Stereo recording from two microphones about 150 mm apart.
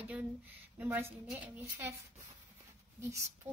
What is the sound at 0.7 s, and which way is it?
Speech, 15° right (ahead or behind).